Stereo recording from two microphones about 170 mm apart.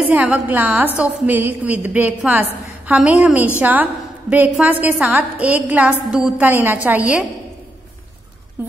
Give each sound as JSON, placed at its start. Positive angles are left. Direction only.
{"t": 0.0, "sound": "a woman's voice", "side_deg": -10}